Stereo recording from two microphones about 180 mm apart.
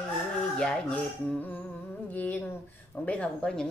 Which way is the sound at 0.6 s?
5° left (ahead or behind).